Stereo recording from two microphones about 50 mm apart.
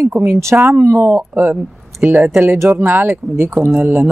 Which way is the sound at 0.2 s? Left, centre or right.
Right.